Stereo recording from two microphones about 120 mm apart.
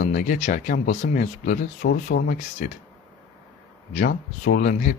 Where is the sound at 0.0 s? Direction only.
90° left.